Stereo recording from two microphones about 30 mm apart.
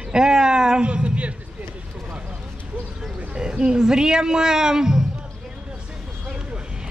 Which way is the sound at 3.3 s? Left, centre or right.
Right.